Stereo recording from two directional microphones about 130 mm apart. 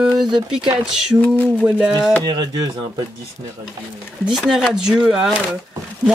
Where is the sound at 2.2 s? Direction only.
35° right (ahead or behind).